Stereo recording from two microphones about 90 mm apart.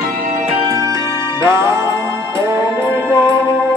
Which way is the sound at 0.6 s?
35° right (ahead or behind).